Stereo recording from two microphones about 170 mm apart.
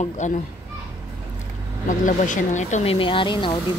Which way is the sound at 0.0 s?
45° left (ahead or behind).